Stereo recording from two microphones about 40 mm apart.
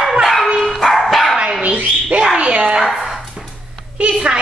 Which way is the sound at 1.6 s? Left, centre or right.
Right.